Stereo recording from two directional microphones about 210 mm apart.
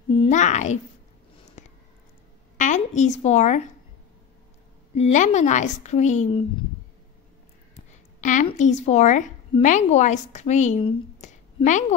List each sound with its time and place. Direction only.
0.1 s a child's voice: 30° left (ahead or behind)
1.6 s a sound: 35° left (ahead or behind)
2.5 s speech: 35° left (ahead or behind)
4.9 s a woman's voice: 35° left (ahead or behind)
8.2 s a woman's voice: 40° left (ahead or behind)